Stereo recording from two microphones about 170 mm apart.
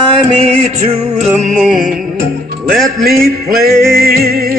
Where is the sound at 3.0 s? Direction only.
65° right (ahead or behind).